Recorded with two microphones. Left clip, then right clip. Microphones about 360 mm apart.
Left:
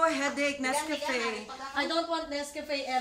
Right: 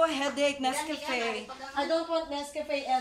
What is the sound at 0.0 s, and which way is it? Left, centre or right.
Speech, centre.